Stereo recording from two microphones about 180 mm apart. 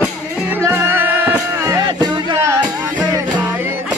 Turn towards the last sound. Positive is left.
turn(degrees=-15)  # may be behind; listen again after turning